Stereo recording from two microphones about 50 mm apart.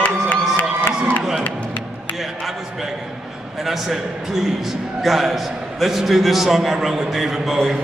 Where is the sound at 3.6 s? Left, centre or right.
Centre.